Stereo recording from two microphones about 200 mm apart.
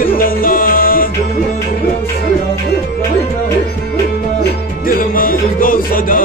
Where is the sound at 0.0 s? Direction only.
45° left (ahead or behind).